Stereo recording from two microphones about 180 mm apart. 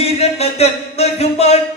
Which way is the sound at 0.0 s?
35° left (ahead or behind).